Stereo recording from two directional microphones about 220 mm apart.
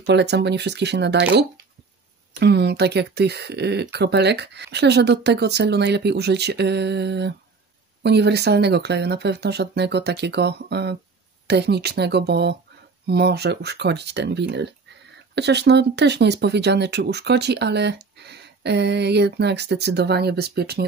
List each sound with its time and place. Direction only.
0.0 s speech: 50° right (ahead or behind)